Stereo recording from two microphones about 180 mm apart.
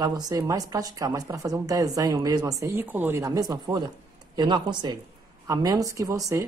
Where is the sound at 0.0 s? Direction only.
20° right (ahead or behind).